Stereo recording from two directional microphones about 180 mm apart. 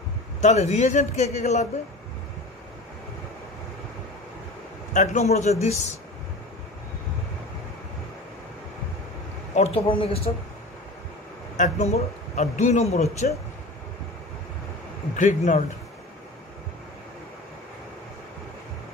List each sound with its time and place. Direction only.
0.4 s a man's voice: 40° left (ahead or behind)
4.9 s a man's voice: 40° left (ahead or behind)
9.6 s a man's voice: 30° left (ahead or behind)
11.5 s a man's voice: 40° left (ahead or behind)
15.1 s a man's voice: 45° left (ahead or behind)